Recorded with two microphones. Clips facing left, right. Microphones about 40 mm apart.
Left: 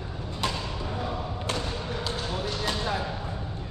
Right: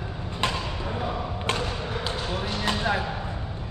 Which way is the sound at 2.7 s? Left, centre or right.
Right.